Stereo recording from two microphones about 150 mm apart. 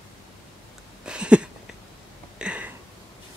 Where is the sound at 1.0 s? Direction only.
5° right (ahead or behind).